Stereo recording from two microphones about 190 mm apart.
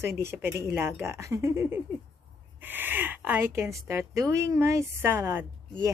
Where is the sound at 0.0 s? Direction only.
15° right (ahead or behind).